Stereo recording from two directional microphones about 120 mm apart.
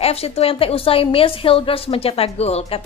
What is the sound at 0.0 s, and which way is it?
A woman's voice, 55° left (ahead or behind).